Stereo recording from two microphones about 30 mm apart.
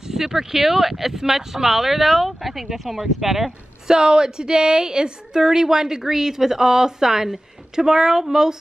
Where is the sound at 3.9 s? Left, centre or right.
Right.